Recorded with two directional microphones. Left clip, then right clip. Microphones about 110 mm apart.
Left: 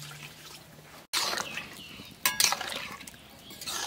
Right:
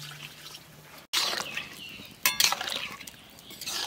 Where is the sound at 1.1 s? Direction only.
5° left (ahead or behind).